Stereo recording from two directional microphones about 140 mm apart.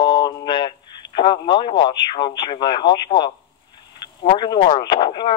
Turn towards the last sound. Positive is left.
turn(degrees=35)  # may be behind; listen again after turning